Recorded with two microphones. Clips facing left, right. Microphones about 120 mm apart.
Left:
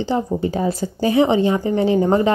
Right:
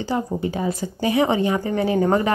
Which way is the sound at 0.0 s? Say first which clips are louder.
Left 3 dB; 30° left (ahead or behind).